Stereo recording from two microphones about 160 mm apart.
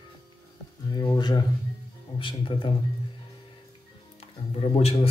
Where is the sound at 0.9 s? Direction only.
25° left (ahead or behind).